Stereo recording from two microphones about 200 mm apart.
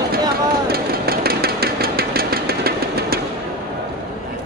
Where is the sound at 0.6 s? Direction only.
50° right (ahead or behind).